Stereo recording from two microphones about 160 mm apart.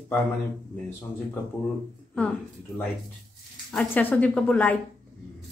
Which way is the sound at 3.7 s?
10° left (ahead or behind).